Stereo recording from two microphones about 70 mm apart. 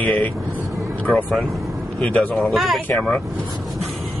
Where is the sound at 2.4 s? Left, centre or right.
Centre.